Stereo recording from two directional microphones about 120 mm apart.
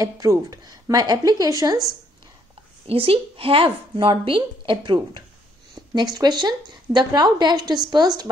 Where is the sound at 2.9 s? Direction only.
50° right (ahead or behind).